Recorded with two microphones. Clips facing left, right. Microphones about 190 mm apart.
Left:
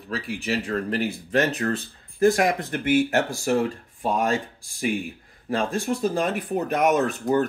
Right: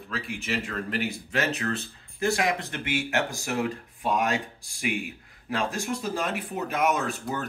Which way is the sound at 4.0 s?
30° left (ahead or behind).